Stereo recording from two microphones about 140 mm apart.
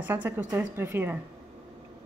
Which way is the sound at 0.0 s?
10° right (ahead or behind).